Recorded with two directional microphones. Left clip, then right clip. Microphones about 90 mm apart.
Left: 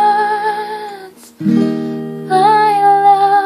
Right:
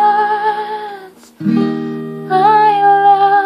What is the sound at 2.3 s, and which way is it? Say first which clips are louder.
Music: right 1 dB; 20° left (ahead or behind).